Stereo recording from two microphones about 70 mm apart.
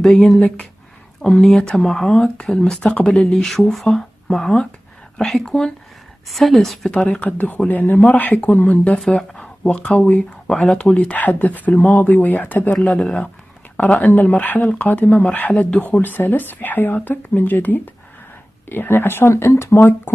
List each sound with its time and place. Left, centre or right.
0.0 s a woman's voice: centre
6.9 s speech: centre
9.0 s speech: centre; by 12.7 s left
12.7 s speech: centre; by 20.0 s left